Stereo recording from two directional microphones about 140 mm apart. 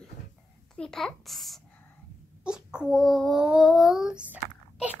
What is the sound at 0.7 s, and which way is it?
Child singing, 5° left (ahead or behind).